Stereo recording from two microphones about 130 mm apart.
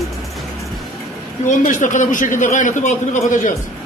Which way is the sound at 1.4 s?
75° left (ahead or behind).